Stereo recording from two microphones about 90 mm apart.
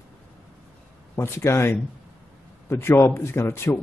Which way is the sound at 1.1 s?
30° left (ahead or behind).